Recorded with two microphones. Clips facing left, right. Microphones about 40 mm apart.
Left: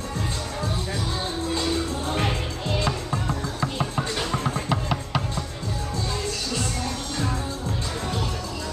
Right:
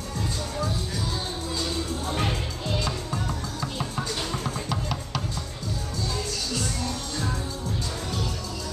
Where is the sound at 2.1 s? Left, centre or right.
Left.